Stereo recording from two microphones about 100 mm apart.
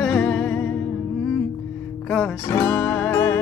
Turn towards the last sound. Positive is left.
turn(degrees=30)  # may be behind; listen again after turning